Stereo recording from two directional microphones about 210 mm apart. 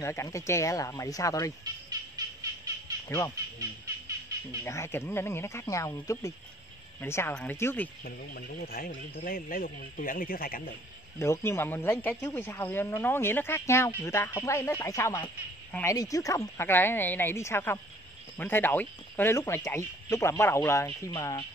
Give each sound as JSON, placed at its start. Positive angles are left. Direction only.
{"t": 0.0, "sound": "speech", "side_deg": 15}
{"t": 1.6, "sound": "a sound", "side_deg": -20}
{"t": 4.6, "sound": "speech", "side_deg": 10}
{"t": 8.0, "sound": "speech", "side_deg": 45}
{"t": 11.1, "sound": "speech", "side_deg": 10}